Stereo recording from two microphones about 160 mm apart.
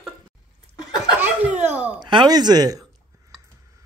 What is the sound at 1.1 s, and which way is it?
Snicker, 10° right (ahead or behind).